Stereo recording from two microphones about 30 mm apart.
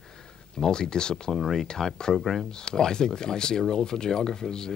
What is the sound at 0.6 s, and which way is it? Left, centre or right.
Speech, left.